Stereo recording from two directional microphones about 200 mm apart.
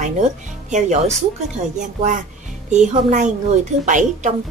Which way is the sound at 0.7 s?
35° right (ahead or behind).